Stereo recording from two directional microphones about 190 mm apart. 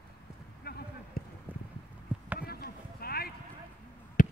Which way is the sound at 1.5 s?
10° right (ahead or behind).